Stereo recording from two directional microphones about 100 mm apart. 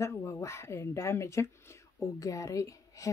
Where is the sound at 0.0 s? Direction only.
25° left (ahead or behind).